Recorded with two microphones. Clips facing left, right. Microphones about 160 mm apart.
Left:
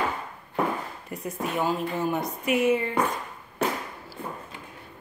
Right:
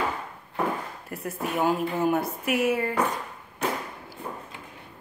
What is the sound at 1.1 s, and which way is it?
A woman's voice, 10° right (ahead or behind).